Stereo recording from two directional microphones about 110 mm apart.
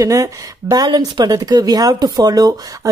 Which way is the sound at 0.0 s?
30° right (ahead or behind).